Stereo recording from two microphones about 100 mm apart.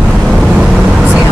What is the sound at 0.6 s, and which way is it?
Vehicle, 10° right (ahead or behind).